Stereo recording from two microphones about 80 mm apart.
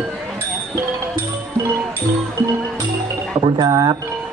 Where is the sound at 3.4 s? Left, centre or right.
Right.